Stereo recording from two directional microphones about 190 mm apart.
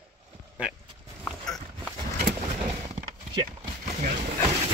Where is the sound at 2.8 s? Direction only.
25° right (ahead or behind).